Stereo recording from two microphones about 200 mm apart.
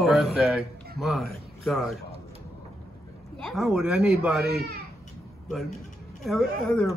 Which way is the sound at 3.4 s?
Centre (ahead or behind).